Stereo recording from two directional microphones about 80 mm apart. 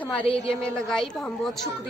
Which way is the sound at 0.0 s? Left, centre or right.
Centre.